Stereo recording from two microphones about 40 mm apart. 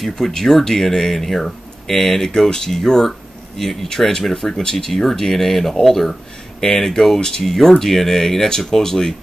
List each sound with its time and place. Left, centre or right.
0.0 s speech: centre
7.8 s speech: centre